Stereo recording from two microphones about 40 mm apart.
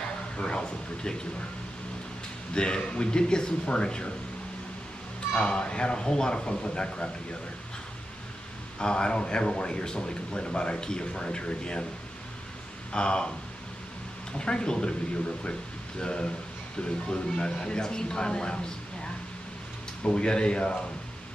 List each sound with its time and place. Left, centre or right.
0.4 s speech: left
2.5 s speech: left
5.4 s speech: left
8.7 s speech: left
12.9 s speech: left
14.4 s speech: left
20.0 s speech: left